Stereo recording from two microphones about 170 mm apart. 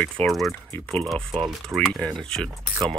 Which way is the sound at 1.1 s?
30° right (ahead or behind).